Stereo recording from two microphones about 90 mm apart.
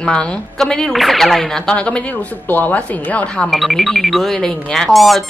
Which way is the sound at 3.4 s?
Centre (ahead or behind).